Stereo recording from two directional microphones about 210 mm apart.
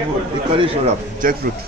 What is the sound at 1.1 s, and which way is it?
Speech, 40° right (ahead or behind).